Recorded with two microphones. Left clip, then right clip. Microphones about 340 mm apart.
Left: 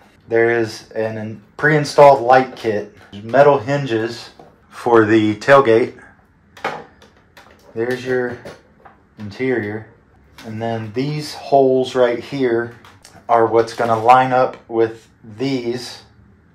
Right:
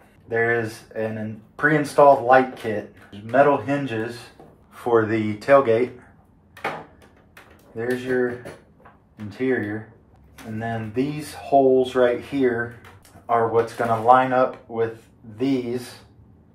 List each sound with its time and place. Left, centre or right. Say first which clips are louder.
0.3 s speech: left 6 dB; left
7.7 s speech: left 4 dB; left
9.3 s speech: left 3 dB; left
10.6 s speech: left 4 dB; left